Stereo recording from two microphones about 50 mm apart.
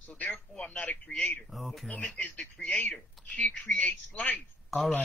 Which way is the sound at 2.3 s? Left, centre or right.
Left.